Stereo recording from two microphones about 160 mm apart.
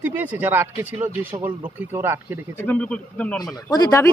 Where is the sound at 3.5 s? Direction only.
20° left (ahead or behind).